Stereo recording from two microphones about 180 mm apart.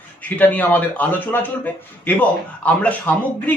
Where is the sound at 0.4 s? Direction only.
10° left (ahead or behind).